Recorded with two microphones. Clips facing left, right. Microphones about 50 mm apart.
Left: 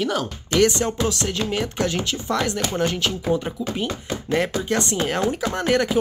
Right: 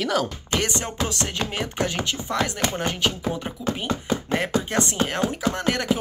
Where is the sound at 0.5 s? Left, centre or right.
Centre.